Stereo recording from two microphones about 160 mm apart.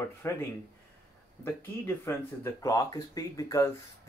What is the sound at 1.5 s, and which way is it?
Speech, 15° left (ahead or behind).